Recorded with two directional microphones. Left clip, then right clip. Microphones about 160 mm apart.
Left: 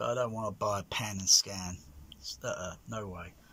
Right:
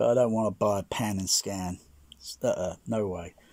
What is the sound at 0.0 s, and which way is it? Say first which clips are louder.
Speech: right 9 dB; 45° right (ahead or behind).